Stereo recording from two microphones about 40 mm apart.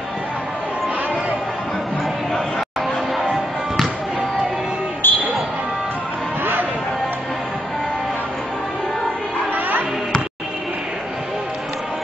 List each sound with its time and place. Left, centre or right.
5.0 s music: left
9.4 s music: right